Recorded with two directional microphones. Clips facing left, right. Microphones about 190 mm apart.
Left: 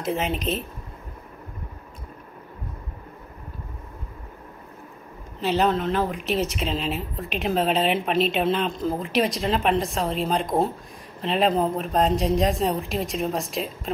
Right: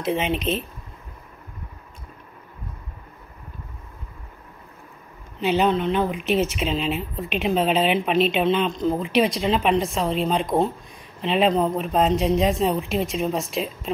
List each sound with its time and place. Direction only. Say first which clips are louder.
0.0 s speech: right 2 dB; centre (ahead or behind)
5.4 s speech: right 2 dB; centre (ahead or behind)